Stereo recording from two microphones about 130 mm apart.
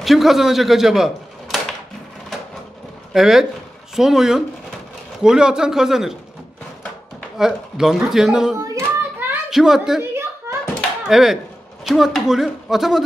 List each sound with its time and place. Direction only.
0.0 s speech: centre (ahead or behind)
3.1 s speech: 5° right (ahead or behind)
7.3 s speech: 5° right (ahead or behind)
8.5 s hands: 20° right (ahead or behind)
9.5 s speech: 5° right (ahead or behind)
11.1 s speech: centre (ahead or behind)